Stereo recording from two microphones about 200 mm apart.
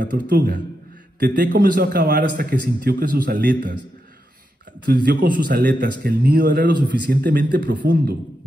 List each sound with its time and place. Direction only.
0.0 s a man's voice: 45° right (ahead or behind)
5.0 s a man's voice: 45° right (ahead or behind)